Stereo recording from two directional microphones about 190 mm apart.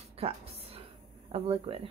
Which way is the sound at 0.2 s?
30° right (ahead or behind).